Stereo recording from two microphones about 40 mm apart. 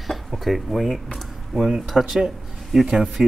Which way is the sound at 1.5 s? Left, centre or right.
Centre.